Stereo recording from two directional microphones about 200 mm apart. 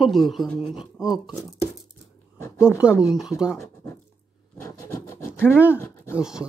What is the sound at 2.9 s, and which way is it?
Speech, 15° left (ahead or behind).